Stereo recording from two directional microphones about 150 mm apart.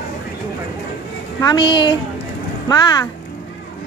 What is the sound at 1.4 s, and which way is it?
A woman's voice, 30° left (ahead or behind).